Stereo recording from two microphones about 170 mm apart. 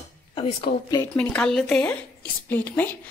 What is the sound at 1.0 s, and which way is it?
Speech, 10° left (ahead or behind).